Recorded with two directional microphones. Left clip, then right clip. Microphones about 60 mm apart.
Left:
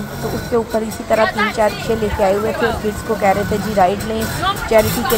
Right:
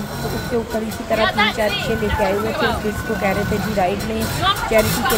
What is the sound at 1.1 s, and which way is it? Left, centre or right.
Speech, left.